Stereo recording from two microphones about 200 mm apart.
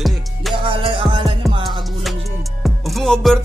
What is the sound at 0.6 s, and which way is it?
Music, 25° right (ahead or behind).